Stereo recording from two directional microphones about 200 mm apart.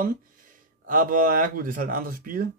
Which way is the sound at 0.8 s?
45° right (ahead or behind).